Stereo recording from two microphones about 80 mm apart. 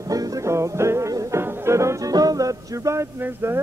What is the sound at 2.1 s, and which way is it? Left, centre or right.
Music, right.